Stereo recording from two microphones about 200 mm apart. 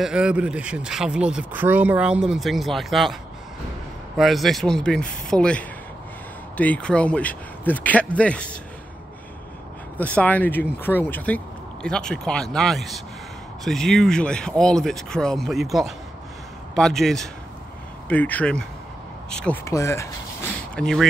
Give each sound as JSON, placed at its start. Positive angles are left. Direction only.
{"t": 0.0, "sound": "speech", "side_deg": -5}
{"t": 4.2, "sound": "speech", "side_deg": 0}
{"t": 9.9, "sound": "speech", "side_deg": 10}